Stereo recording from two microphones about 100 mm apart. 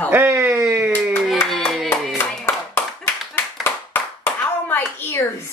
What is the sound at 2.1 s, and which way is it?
Clapping, 25° left (ahead or behind).